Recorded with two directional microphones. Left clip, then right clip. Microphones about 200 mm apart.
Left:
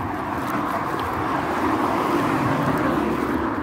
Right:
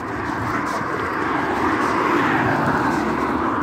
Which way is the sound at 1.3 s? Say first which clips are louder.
Right 2 dB; 40° left (ahead or behind).